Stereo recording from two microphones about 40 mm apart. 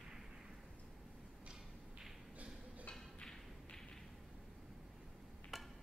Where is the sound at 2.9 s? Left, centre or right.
Centre.